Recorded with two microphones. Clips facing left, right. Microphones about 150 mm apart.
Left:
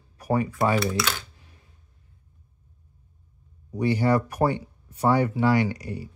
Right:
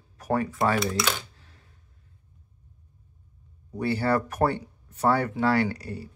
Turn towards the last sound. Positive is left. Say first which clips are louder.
# left 1 dB
turn(degrees=15)  # may be behind; listen again after turning